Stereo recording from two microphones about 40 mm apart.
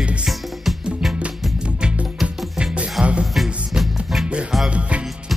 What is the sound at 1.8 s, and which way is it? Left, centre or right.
Music, right.